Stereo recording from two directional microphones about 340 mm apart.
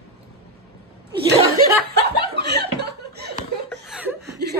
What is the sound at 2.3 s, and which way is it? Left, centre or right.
Chuckle, right.